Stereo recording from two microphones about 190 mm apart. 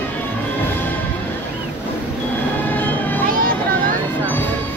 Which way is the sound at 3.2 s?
50° right (ahead or behind).